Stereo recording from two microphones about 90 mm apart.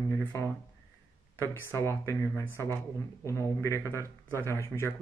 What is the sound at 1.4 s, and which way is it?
Speech, 30° left (ahead or behind).